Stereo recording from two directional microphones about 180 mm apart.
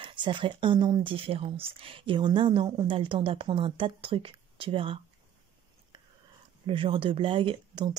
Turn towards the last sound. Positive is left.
turn(degrees=-25)  # may be behind; listen again after turning